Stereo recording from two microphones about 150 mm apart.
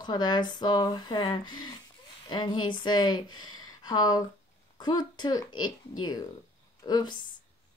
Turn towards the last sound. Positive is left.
turn(degrees=30)  # may be behind; listen again after turning